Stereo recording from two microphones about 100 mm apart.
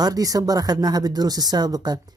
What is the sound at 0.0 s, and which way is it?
Speech, 40° right (ahead or behind).